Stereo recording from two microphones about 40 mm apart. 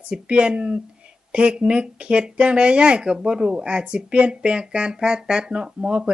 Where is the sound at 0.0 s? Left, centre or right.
Right.